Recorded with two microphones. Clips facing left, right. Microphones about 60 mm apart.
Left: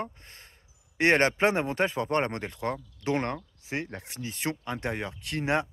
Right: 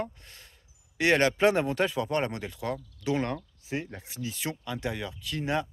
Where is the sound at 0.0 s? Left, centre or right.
Left.